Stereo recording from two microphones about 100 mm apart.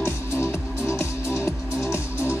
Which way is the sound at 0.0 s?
25° left (ahead or behind).